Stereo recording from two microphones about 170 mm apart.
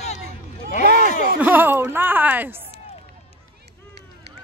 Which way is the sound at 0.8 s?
65° right (ahead or behind).